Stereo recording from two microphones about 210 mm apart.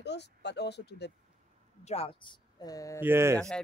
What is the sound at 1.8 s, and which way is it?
Speech, 30° left (ahead or behind).